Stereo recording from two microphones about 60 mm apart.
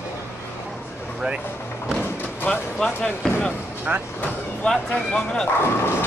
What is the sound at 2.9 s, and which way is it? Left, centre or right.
Speech, left.